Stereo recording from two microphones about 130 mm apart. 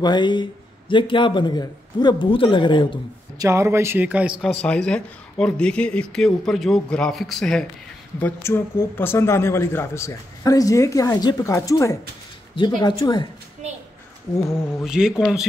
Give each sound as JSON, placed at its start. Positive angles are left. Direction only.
{"t": 0.0, "sound": "speech", "side_deg": 35}
{"t": 3.3, "sound": "speech", "side_deg": -20}
{"t": 4.6, "sound": "speech", "side_deg": 5}
{"t": 8.2, "sound": "speech", "side_deg": 20}
{"t": 12.5, "sound": "speech", "side_deg": 35}
{"t": 14.4, "sound": "mantra", "side_deg": 20}
{"t": 14.8, "sound": "speech", "side_deg": -5}